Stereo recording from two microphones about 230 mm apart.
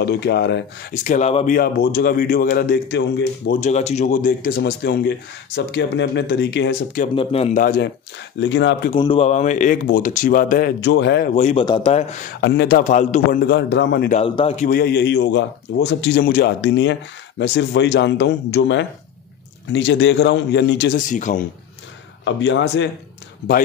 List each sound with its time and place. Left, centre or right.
0.0 s a man's voice: left
1.0 s speech: left
3.6 s a man's voice: left
7.2 s speech: left
7.6 s speech: left
8.4 s a man's voice: left
9.0 s speech: left
11.3 s speech: left
12.4 s a man's voice: left
14.1 s a man's voice: left
21.1 s speech: left
22.2 s a man's voice: left